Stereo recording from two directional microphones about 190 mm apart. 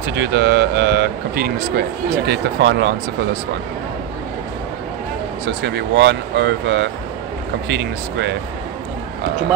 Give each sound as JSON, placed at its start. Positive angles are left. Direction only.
{"t": 0.1, "sound": "a man's voice", "side_deg": -60}
{"t": 5.6, "sound": "a man's voice", "side_deg": -65}